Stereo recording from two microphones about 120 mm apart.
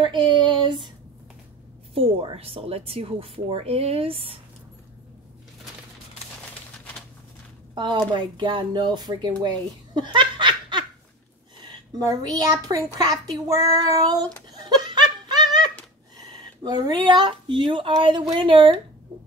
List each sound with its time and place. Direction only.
0.0 s a sound: 40° right (ahead or behind)
2.0 s speech: 55° right (ahead or behind)
7.7 s a woman's voice: 40° right (ahead or behind)
14.5 s laughter: 35° right (ahead or behind)
16.2 s a woman's voice: 35° right (ahead or behind)